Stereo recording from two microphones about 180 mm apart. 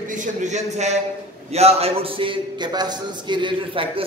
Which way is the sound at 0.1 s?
45° right (ahead or behind).